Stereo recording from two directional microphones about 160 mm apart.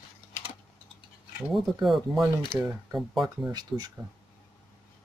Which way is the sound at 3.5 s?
25° right (ahead or behind).